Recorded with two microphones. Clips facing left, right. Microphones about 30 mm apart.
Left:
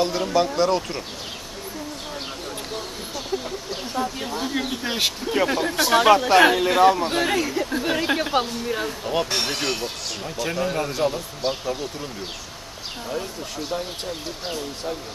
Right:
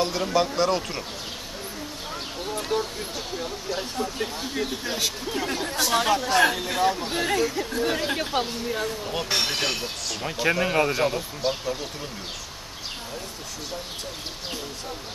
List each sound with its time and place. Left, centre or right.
0.0 s speech: centre
3.7 s speech: centre
4.6 s speech: left; by 9.3 s centre
9.3 s speech: centre
10.2 s speech: right
11.4 s speech: centre